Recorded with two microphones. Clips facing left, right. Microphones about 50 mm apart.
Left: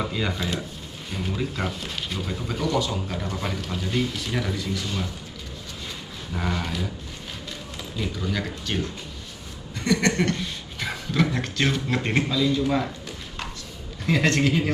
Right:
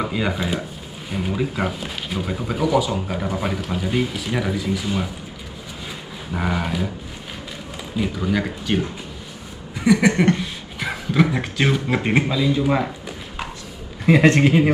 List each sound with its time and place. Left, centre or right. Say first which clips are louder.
0.0 s speech: right 4 dB; centre
6.3 s speech: right 5 dB; centre
7.9 s speech: right 7 dB; centre
14.0 s a man's voice: right 7 dB; right